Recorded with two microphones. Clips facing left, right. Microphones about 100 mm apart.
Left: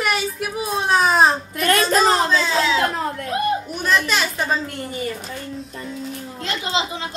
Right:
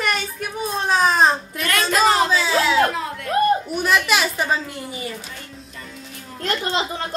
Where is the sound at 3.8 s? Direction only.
10° right (ahead or behind).